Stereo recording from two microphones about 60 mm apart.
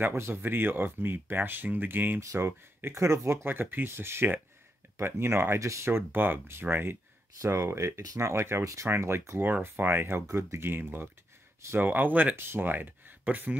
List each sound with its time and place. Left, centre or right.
0.0 s speech: right
2.1 s speech: right
3.4 s speech: right
5.6 s speech: right
7.4 s speech: right
9.4 s speech: right